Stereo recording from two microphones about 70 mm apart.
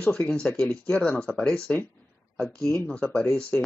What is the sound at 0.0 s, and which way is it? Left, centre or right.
Speech, centre.